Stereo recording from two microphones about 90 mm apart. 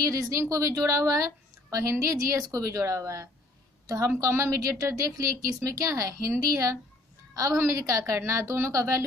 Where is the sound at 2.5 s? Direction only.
35° right (ahead or behind).